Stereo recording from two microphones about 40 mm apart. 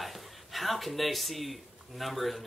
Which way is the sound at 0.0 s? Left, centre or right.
Centre.